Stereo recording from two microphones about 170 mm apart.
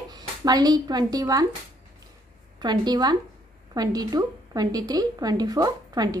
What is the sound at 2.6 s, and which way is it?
A woman's voice, 25° right (ahead or behind).